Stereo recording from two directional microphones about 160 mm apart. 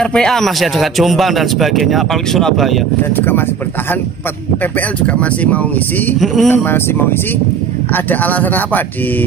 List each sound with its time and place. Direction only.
0.0 s a man's voice: 5° left (ahead or behind)
3.2 s speech: 15° left (ahead or behind)
5.0 s a man's voice: 10° left (ahead or behind)
6.5 s speech: 15° left (ahead or behind)